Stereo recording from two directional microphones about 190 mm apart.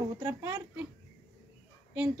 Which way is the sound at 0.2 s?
15° right (ahead or behind).